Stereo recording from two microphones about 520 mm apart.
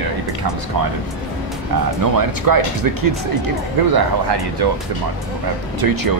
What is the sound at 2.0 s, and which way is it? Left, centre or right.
Speech, right.